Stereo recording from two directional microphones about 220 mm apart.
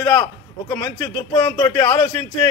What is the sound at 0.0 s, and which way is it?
A man's voice, 15° left (ahead or behind).